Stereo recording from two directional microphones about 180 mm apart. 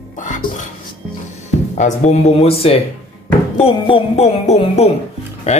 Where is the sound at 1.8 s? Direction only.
40° left (ahead or behind).